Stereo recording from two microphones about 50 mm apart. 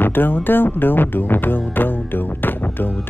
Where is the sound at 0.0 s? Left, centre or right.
Left.